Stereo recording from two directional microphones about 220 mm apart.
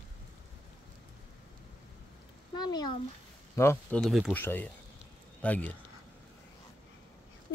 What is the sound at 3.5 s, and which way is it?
Speech, 10° left (ahead or behind).